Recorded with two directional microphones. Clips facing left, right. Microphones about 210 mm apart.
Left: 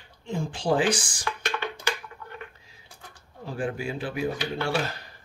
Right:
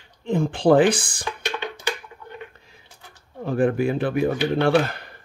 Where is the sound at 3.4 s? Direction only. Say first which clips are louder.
Right 10 dB; 55° right (ahead or behind).